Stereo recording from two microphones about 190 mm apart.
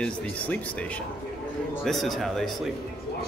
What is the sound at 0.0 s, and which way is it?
Speech, 5° left (ahead or behind).